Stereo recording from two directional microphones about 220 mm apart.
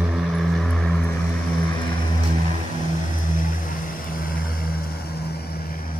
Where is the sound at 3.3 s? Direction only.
35° left (ahead or behind).